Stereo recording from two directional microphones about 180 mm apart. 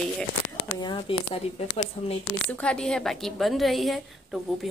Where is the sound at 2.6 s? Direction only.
5° left (ahead or behind).